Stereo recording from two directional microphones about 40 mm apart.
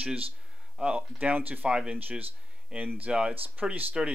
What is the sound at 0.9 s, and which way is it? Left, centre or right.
Speech, right.